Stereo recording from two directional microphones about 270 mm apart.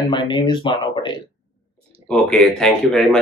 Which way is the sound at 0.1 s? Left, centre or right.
Centre.